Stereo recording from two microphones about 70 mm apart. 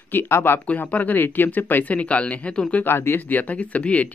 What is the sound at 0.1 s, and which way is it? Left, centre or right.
Speech, left.